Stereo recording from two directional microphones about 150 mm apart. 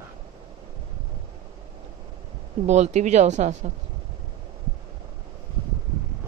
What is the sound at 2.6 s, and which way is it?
Speech, 50° right (ahead or behind).